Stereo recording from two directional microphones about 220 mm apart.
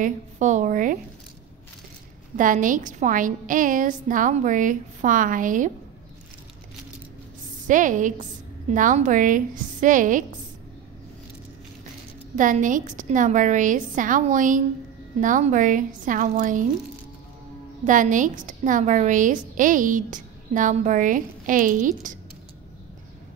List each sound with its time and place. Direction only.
0.0 s a woman's voice: 35° right (ahead or behind)
2.3 s a woman's voice: 35° right (ahead or behind)
7.6 s a woman's voice: 35° right (ahead or behind)
12.4 s a woman's voice: 35° right (ahead or behind)
17.8 s a woman's voice: 35° right (ahead or behind)